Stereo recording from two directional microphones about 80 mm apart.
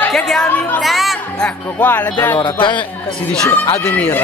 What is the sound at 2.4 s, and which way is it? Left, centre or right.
Speech, left.